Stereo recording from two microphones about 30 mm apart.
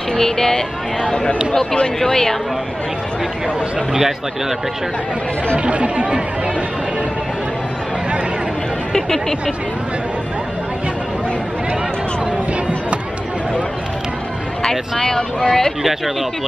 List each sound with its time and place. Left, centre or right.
0.1 s speech: centre
3.9 s speech: centre
5.7 s speech: right
14.6 s speech: left